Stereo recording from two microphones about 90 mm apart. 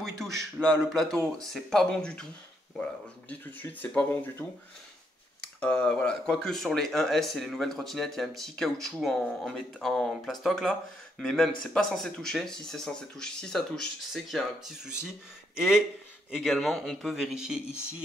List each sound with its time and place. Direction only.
0.6 s speech: 10° left (ahead or behind); by 4.5 s 25° left (ahead or behind)
5.4 s speech: 10° left (ahead or behind); by 17.6 s 5° right (ahead or behind)